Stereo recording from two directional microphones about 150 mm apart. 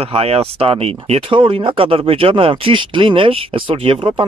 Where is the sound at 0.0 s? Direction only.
40° right (ahead or behind).